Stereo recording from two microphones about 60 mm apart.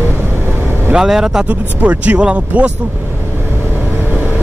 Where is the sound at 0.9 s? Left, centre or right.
Centre.